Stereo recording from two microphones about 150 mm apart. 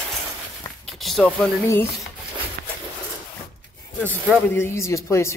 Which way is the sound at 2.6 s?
80° right.